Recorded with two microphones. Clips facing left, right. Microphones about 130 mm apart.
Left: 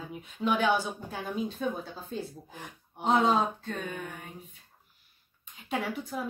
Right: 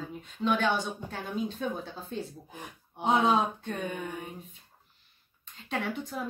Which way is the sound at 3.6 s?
15° right (ahead or behind).